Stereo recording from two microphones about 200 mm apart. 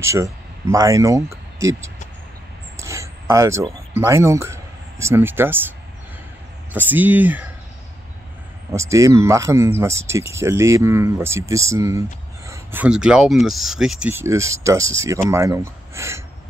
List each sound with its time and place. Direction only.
0.0 s speech: 15° right (ahead or behind)
2.8 s a sound: 15° right (ahead or behind)
3.9 s speech: 15° right (ahead or behind)
8.7 s speech: 15° right (ahead or behind)